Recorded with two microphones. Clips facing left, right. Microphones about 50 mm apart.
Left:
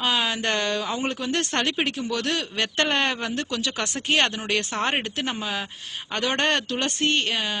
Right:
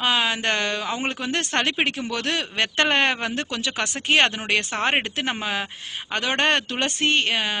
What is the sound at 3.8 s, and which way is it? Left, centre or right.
Speech, centre.